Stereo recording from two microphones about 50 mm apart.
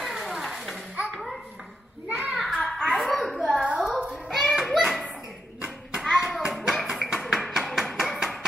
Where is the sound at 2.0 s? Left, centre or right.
Right.